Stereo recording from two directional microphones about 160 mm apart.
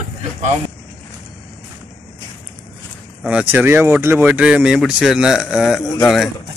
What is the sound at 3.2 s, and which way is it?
Speech, 10° right (ahead or behind).